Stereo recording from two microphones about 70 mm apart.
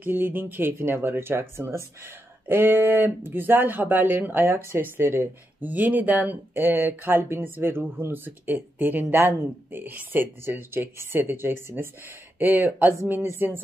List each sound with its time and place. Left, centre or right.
0.0 s speech: right